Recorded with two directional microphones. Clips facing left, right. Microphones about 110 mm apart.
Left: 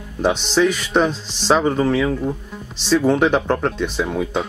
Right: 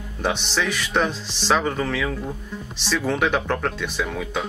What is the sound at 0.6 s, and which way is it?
Speech, 15° left (ahead or behind).